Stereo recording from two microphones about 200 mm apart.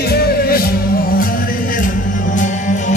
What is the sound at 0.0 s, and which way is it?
Music, 50° left (ahead or behind).